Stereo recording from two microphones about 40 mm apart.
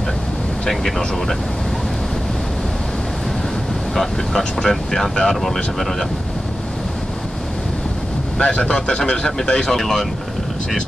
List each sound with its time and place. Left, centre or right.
0.7 s speech: centre
3.9 s speech: centre
8.4 s speech: left; by 10.0 s centre